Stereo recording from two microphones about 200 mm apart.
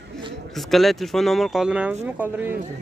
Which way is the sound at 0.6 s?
Centre (ahead or behind).